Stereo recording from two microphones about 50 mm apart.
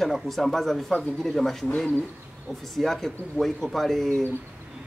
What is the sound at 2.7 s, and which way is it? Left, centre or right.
Speech, centre.